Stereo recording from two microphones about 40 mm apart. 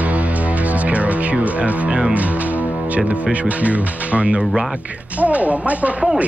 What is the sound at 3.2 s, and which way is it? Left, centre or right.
Speech, right.